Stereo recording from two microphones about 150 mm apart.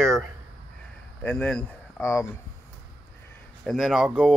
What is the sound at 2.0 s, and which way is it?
Speech, 15° left (ahead or behind).